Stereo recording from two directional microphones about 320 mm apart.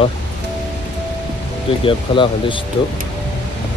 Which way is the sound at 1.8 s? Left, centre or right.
Centre.